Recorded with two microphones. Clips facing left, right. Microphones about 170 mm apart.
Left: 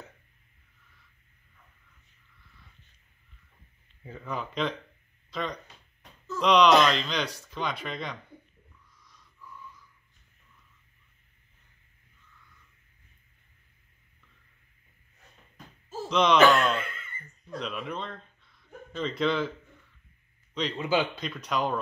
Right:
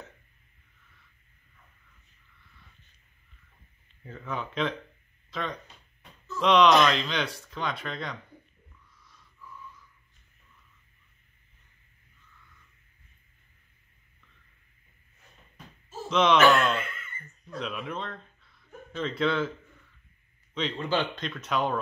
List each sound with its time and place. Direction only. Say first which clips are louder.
4.2 s speech: even; centre (ahead or behind)
16.1 s speech: even; centre (ahead or behind)
16.5 s chuckle: even; centre (ahead or behind)
17.6 s speech: even; centre (ahead or behind)
20.5 s speech: left 1 dB; centre (ahead or behind)